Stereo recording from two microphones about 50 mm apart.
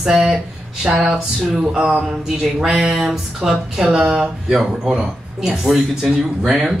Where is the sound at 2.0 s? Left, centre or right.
Centre.